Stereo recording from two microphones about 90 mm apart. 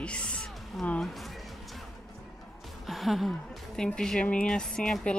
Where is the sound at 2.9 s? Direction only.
Centre (ahead or behind).